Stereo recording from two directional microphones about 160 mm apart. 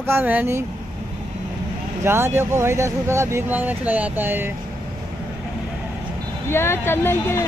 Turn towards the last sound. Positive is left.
turn(degrees=15)  # may be behind; listen again after turning